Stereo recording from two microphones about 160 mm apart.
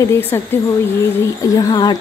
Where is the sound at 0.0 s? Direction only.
15° left (ahead or behind).